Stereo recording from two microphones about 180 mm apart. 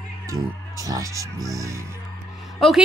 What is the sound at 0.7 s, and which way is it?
Speech, 20° right (ahead or behind).